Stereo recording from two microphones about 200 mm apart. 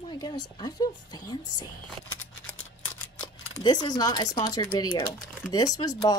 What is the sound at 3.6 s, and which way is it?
Speech, 20° left (ahead or behind).